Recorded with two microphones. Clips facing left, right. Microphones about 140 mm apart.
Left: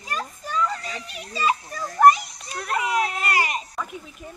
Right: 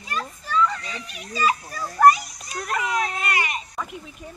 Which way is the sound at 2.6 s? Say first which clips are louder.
Left 1 dB; 5° left (ahead or behind).